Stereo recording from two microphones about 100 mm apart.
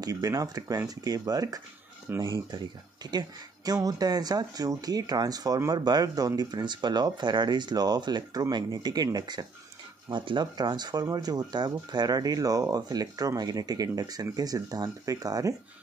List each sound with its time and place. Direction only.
0.0 s speech: 35° right (ahead or behind)